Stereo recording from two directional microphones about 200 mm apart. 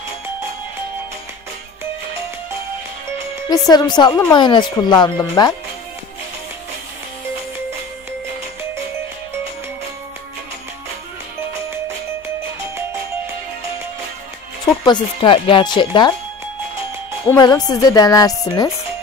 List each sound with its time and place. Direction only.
3.4 s speech: 20° left (ahead or behind)
14.9 s speech: 25° left (ahead or behind)
17.4 s speech: 20° left (ahead or behind)